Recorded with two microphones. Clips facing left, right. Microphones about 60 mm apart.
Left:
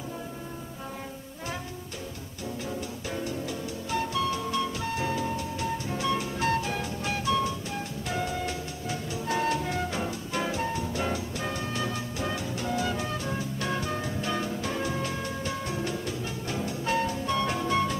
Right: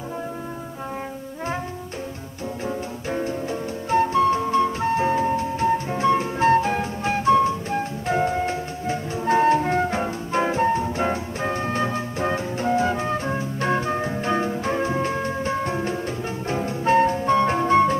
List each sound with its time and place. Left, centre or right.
2.6 s music: right